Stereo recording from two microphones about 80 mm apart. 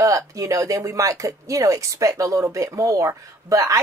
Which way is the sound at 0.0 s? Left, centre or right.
Right.